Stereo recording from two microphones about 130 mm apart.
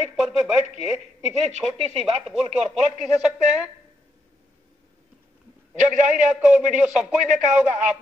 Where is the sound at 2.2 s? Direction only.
5° right (ahead or behind).